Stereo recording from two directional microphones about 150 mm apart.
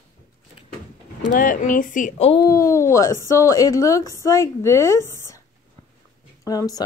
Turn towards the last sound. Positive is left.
turn(degrees=25)  # may be behind; listen again after turning